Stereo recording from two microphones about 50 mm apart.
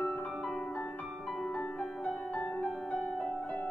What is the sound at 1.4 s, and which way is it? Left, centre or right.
Music, left.